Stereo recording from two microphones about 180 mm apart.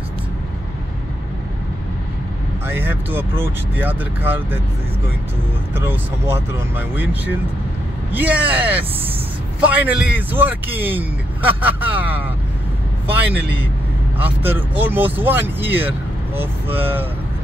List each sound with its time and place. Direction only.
2.6 s speech: 10° right (ahead or behind)
5.8 s speech: 15° right (ahead or behind)